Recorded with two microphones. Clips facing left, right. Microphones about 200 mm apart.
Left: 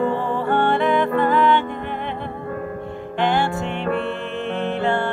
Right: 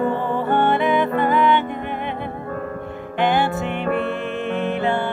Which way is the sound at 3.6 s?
Centre (ahead or behind).